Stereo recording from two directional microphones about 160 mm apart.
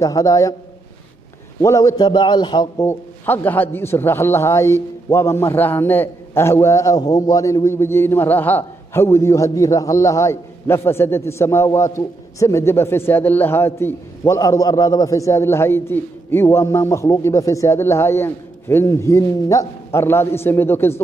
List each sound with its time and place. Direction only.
0.0 s a man's voice: 20° left (ahead or behind)
1.6 s a man's voice: 20° left (ahead or behind)
2.9 s a man's voice: 10° left (ahead or behind)